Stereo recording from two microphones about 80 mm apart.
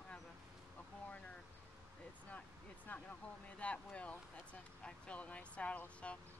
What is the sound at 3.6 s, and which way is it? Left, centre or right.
Speech, centre.